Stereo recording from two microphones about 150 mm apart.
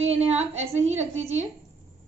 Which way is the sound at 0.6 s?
50° right (ahead or behind).